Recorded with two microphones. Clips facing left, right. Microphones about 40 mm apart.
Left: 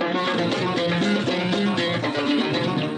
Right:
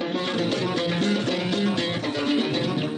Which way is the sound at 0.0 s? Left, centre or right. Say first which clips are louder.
Left 3 dB; left.